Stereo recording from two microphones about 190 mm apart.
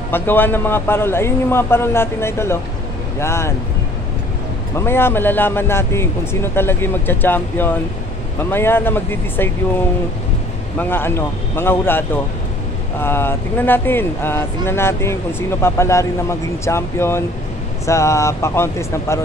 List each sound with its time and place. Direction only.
0.1 s speech: 10° left (ahead or behind)
4.7 s speech: 10° left (ahead or behind)
13.0 s speech: 10° left (ahead or behind)